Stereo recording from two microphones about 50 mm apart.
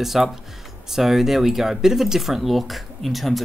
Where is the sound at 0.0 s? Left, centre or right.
Centre.